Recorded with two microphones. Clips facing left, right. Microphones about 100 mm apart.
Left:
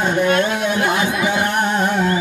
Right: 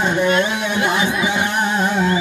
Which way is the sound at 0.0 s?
50° left (ahead or behind).